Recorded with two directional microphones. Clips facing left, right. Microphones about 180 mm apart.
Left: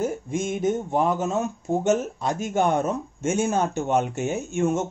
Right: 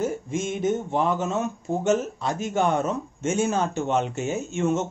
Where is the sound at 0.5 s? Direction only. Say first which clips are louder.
Even; 40° left (ahead or behind).